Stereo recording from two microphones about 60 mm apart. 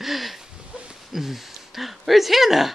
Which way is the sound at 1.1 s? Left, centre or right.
Centre.